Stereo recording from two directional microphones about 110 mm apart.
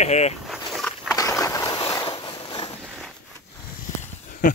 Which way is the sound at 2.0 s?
50° left (ahead or behind).